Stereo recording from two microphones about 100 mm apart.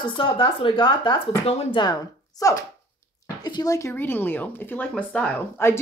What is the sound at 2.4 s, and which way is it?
Speech, 35° left (ahead or behind).